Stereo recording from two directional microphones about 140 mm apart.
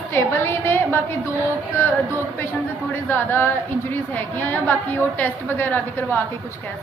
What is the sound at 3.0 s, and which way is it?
A woman's voice, 15° left (ahead or behind).